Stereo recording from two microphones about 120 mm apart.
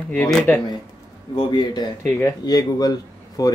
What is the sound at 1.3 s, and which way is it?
A man's voice, 35° left (ahead or behind).